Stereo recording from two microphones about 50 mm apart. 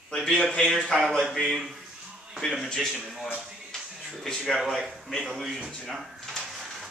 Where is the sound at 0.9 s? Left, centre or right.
Centre.